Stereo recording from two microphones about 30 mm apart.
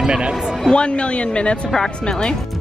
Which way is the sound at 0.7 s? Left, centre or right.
Left.